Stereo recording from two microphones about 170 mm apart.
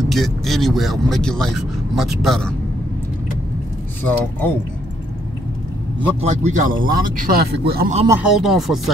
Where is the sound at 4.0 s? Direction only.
10° left (ahead or behind).